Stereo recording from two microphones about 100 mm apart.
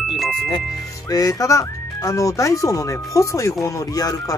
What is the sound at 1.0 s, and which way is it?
Speech, 35° left (ahead or behind).